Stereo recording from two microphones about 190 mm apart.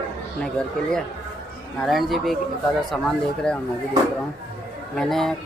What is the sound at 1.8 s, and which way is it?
A man's voice, centre (ahead or behind).